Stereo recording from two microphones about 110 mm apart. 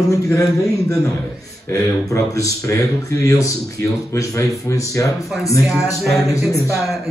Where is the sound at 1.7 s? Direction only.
30° left (ahead or behind).